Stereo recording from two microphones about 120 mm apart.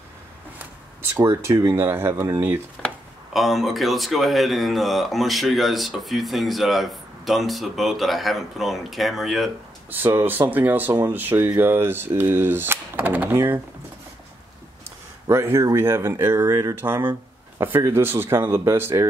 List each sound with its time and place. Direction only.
1.1 s speech: 20° right (ahead or behind)
3.3 s speech: centre (ahead or behind)
9.8 s speech: 20° right (ahead or behind)
15.2 s speech: 20° right (ahead or behind)